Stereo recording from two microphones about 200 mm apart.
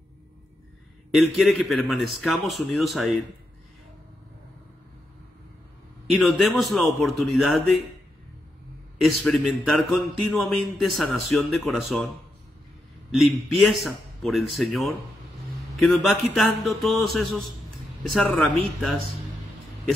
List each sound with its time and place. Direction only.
1.1 s a man's voice: centre (ahead or behind)
6.1 s a man's voice: centre (ahead or behind)
9.0 s a man's voice: centre (ahead or behind)
13.1 s a man's voice: centre (ahead or behind)